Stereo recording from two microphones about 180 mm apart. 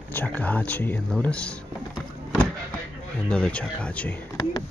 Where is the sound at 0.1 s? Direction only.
10° left (ahead or behind).